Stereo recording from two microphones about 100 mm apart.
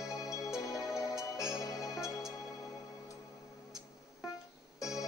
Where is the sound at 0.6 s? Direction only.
40° left (ahead or behind).